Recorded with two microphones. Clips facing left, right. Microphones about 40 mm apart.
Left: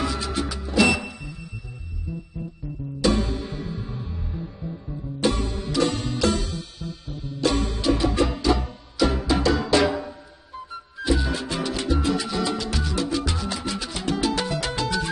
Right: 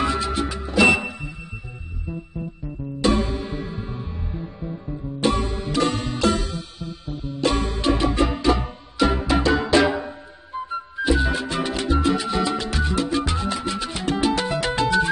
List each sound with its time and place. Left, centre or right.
0.0 s music: right
3.0 s music: right